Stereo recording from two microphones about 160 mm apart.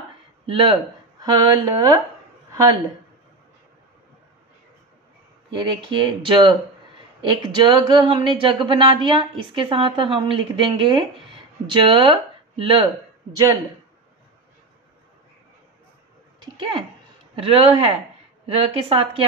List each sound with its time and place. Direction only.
0.5 s a woman's voice: 35° right (ahead or behind)
5.5 s a woman's voice: 30° right (ahead or behind)
16.5 s a woman's voice: 30° right (ahead or behind)